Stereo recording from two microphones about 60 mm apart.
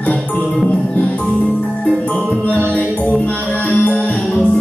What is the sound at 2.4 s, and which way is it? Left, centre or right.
Music, left.